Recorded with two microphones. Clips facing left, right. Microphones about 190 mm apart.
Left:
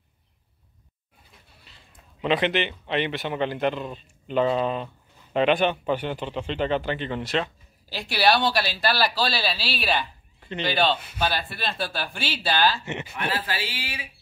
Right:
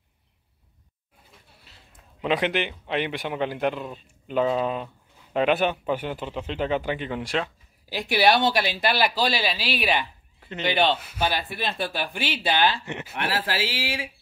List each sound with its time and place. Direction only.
2.2 s speech: 10° right (ahead or behind)
7.9 s speech: 20° right (ahead or behind)
11.0 s speech: 10° right (ahead or behind)
12.8 s speech: centre (ahead or behind)
13.1 s speech: 80° right